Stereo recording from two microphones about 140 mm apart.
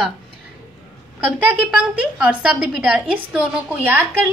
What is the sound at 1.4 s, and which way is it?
A woman's voice, 10° right (ahead or behind).